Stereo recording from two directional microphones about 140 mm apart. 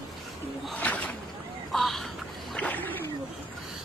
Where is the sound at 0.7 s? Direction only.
10° left (ahead or behind).